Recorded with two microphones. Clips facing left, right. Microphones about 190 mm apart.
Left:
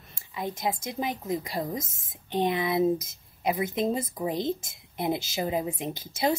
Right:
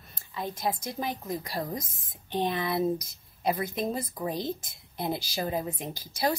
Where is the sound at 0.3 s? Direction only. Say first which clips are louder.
Left 1 dB; 20° left (ahead or behind).